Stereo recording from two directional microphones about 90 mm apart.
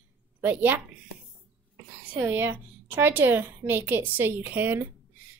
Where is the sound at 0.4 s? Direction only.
20° right (ahead or behind).